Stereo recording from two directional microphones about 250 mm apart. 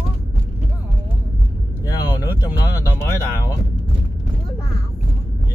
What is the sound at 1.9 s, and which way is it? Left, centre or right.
Vehicle, centre.